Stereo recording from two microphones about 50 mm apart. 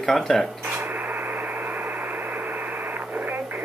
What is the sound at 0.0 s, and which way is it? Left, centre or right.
Speech, centre.